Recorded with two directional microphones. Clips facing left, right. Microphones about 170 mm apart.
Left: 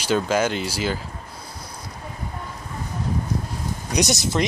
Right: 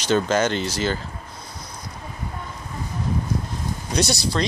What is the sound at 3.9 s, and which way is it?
Speech, 20° left (ahead or behind).